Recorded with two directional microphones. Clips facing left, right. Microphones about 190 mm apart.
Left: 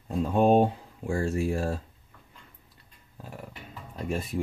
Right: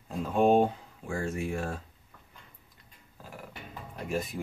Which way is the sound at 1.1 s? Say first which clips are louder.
Left 5 dB; 35° left (ahead or behind).